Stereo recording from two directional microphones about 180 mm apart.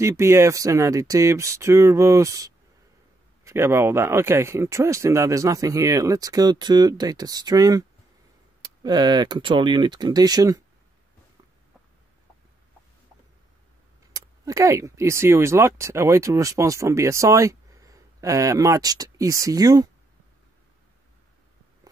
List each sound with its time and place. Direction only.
0.0 s speech: 15° right (ahead or behind)
8.8 s speech: 25° right (ahead or behind)
14.1 s speech: 20° right (ahead or behind)